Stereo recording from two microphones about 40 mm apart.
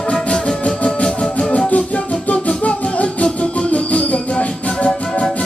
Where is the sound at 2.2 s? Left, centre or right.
Left.